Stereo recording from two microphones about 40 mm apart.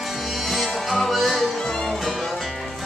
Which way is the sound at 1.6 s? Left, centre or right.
Centre.